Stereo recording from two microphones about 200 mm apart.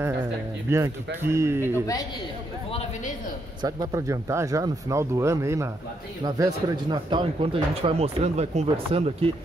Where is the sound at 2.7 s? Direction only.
30° left (ahead or behind).